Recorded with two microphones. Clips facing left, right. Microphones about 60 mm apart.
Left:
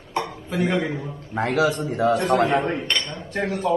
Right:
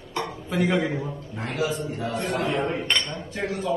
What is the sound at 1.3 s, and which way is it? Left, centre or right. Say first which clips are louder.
A man's voice: left 7 dB; left.